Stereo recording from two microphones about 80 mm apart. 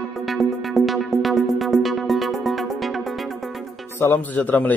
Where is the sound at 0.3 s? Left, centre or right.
Centre.